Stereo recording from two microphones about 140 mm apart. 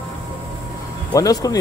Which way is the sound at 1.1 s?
25° left (ahead or behind).